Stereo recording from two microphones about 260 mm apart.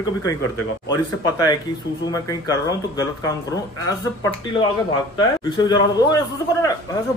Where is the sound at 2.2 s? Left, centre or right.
Centre.